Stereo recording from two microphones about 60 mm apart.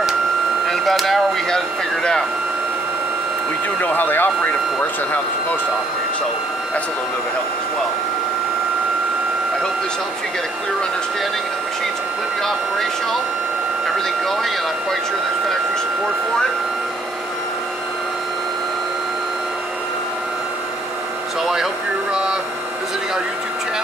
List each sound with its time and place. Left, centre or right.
0.7 s a sound: centre
3.8 s speech: left
12.4 s speech: centre